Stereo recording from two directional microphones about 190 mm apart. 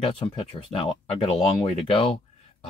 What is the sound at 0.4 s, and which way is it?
Speech, 30° left (ahead or behind).